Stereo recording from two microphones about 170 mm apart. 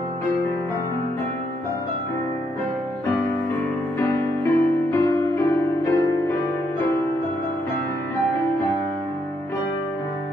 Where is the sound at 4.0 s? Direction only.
15° left (ahead or behind).